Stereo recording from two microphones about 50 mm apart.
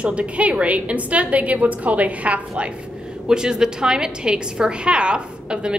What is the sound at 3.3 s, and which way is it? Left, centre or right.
A woman's voice, centre.